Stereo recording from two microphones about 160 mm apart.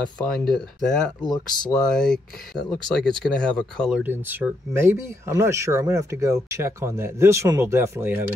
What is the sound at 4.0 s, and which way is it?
Speech, 15° right (ahead or behind).